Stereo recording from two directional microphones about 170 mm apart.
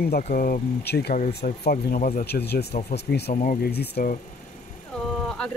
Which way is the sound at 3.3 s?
45° left (ahead or behind).